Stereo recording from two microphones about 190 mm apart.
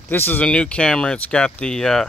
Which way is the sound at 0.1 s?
10° left (ahead or behind).